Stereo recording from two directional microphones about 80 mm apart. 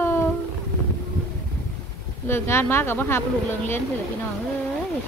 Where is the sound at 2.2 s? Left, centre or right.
Left.